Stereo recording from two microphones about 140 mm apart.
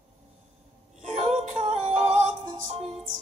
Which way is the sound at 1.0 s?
50° right (ahead or behind).